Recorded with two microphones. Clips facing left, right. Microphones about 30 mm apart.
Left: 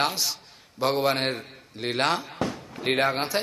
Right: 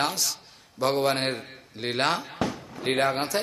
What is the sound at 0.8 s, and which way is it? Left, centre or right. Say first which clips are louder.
A man's voice: even; centre.